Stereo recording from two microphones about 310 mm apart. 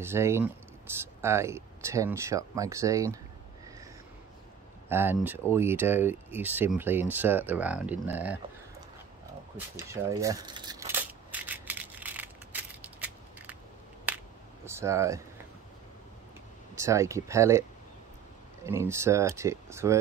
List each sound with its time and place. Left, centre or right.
0.0 s speech: centre
4.8 s speech: centre
9.8 s a sound: centre
14.0 s finger snapping: centre
16.7 s speech: centre